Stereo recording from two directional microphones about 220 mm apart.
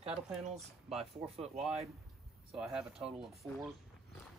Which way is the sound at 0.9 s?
Centre (ahead or behind).